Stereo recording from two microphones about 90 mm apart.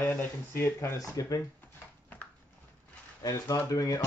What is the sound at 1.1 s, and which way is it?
Speech, 40° left (ahead or behind).